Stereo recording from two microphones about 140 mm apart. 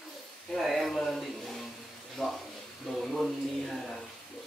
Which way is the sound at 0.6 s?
Centre (ahead or behind).